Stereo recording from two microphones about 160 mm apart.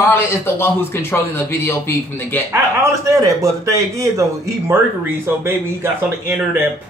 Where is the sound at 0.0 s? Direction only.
15° left (ahead or behind).